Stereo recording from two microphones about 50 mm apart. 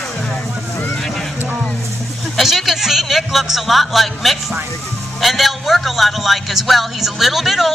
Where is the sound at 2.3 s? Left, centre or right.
Centre.